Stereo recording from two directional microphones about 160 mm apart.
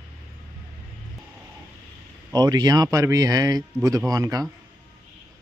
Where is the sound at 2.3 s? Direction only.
25° right (ahead or behind).